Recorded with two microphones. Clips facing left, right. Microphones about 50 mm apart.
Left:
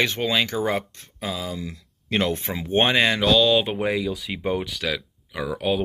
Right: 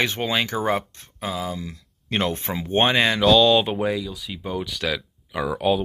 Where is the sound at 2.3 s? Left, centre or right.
Centre; by 4.7 s left.